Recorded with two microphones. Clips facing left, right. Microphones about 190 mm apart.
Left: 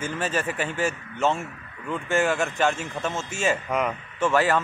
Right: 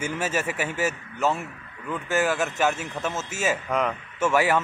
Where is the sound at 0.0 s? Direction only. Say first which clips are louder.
Even; 10° right (ahead or behind).